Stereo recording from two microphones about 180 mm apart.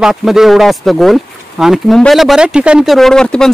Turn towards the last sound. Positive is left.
turn(degrees=5)  # may be behind; listen again after turning